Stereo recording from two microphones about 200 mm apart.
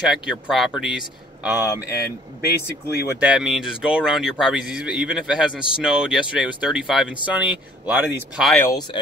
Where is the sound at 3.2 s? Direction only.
5° right (ahead or behind).